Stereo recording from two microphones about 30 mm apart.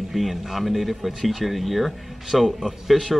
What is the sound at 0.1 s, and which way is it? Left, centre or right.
Speech, centre.